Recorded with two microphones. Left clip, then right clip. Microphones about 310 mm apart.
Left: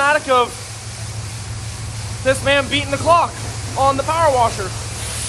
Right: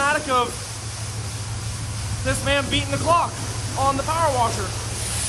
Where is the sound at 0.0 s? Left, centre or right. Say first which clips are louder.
Left 6 dB; centre.